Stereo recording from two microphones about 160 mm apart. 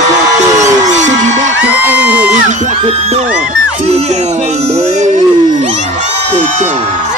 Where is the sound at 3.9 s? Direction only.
45° right (ahead or behind).